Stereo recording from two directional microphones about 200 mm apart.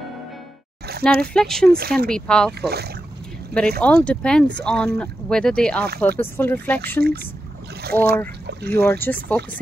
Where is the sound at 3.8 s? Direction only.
5° left (ahead or behind).